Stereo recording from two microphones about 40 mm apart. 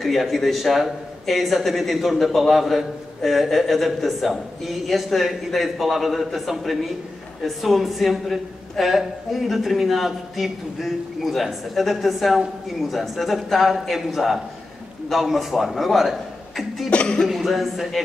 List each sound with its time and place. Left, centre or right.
0.0 s a man's voice: centre
16.9 s speech: left
17.3 s a man's voice: centre